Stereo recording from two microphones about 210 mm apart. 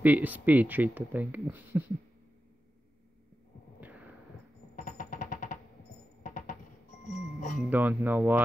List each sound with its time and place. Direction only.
0.0 s speech: 10° right (ahead or behind)
3.8 s a sound: 5° right (ahead or behind)
4.7 s music: 40° left (ahead or behind)
7.7 s speech: 10° right (ahead or behind)